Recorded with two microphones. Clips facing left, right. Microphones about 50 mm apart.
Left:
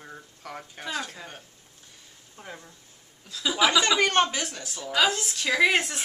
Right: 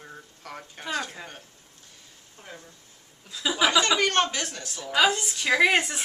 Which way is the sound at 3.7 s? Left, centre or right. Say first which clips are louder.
Right 1 dB; centre.